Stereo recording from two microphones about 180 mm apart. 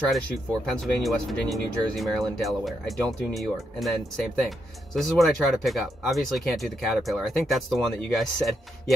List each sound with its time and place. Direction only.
0.7 s speech: centre (ahead or behind)